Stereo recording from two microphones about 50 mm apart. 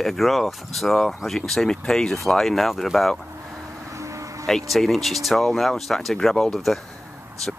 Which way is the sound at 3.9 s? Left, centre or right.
Right.